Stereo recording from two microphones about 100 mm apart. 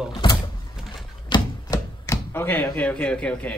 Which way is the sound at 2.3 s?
20° left (ahead or behind).